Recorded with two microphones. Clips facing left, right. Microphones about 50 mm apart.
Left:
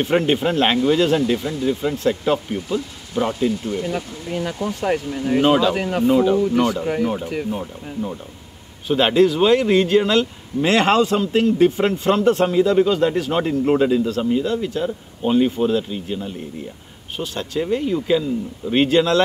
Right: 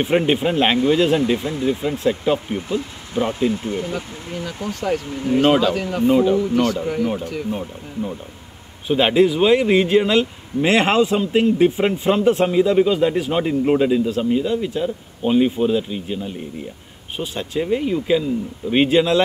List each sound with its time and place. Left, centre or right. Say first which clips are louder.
0.0 s speech: even; centre
4.6 s speech: right 1 dB; left
5.4 s speech: even; centre
5.8 s speech: left 1 dB; left
6.0 s speech: right 1 dB; centre
6.6 s speech: even; centre
8.8 s speech: even; centre